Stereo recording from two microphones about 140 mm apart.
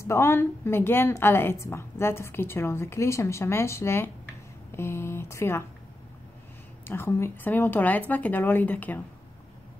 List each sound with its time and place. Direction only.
0.0 s a woman's voice: 15° left (ahead or behind)
6.9 s a woman's voice: 15° left (ahead or behind)